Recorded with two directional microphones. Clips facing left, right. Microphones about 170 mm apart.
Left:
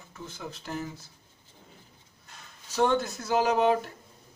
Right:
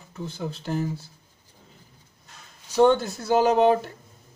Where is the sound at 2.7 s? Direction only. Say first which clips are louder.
Right 7 dB; 35° right (ahead or behind).